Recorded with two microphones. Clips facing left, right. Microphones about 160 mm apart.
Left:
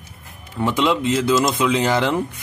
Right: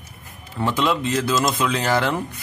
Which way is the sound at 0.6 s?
15° left (ahead or behind).